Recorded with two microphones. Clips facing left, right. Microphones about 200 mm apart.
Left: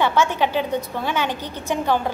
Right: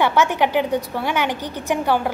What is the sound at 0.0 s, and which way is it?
A woman's voice, 15° right (ahead or behind).